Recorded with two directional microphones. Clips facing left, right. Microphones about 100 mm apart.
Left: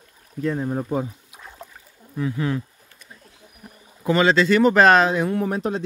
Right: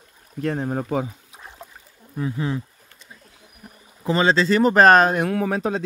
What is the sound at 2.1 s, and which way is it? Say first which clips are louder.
Speech: left 1 dB; 25° right (ahead or behind).